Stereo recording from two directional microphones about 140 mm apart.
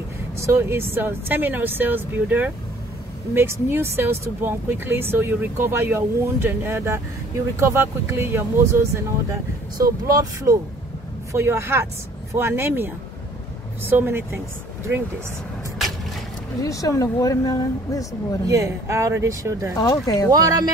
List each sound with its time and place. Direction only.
0.4 s speech: 20° right (ahead or behind)
16.6 s speech: 25° left (ahead or behind)
18.5 s speech: 20° right (ahead or behind)
19.8 s speech: 25° left (ahead or behind)
20.2 s speech: 25° right (ahead or behind)